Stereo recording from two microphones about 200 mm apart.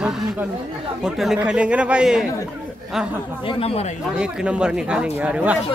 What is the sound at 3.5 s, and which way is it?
Speech, 30° left (ahead or behind).